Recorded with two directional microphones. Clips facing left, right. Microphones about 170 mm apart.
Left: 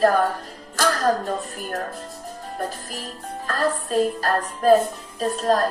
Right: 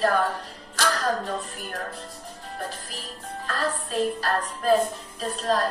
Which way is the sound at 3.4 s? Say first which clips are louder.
Left 5 dB; 45° left (ahead or behind).